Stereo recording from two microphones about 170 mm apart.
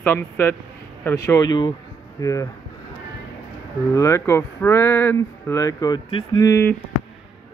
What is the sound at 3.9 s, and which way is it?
Speech, 20° left (ahead or behind).